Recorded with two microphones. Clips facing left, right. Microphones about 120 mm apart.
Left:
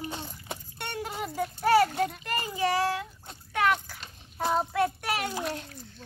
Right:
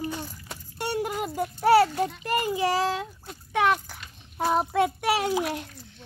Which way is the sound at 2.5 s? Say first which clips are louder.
Left 1 dB; 20° right (ahead or behind).